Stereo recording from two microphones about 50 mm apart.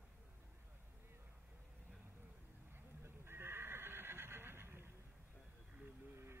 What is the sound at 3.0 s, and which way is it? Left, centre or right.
Neigh, right.